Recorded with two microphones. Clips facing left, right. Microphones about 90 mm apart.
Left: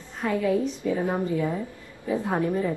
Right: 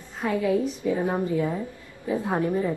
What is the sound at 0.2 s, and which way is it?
A woman's voice, 15° right (ahead or behind).